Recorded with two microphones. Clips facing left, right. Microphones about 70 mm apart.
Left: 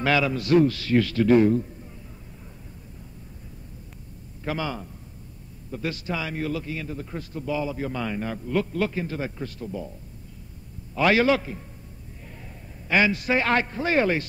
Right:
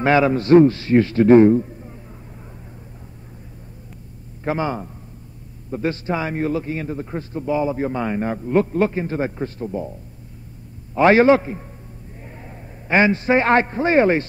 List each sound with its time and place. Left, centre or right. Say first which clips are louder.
0.0 s a man's voice: right 7 dB; right
4.5 s a man's voice: right 7 dB; right
11.0 s a man's voice: right 7 dB; right